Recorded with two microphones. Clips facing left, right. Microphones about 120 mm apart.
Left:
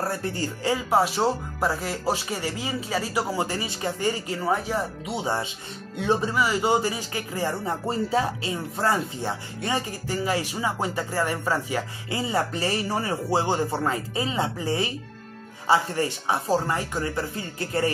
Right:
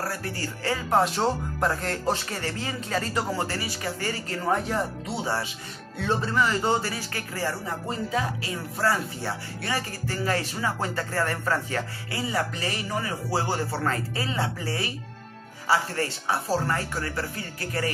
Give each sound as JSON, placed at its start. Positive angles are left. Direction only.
{"t": 0.0, "sound": "a man's voice", "side_deg": 25}
{"t": 4.5, "sound": "speech", "side_deg": 0}
{"t": 5.0, "sound": "a man's voice", "side_deg": 15}
{"t": 12.1, "sound": "speech", "side_deg": 25}